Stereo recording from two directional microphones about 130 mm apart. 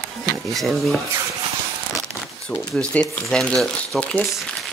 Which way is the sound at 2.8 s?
5° left (ahead or behind).